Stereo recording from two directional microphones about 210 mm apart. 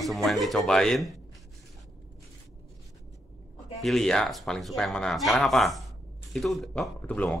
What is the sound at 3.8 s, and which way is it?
Speech, centre (ahead or behind).